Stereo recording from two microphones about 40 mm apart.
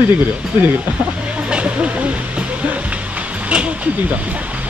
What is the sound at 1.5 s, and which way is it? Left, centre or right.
Speech, right.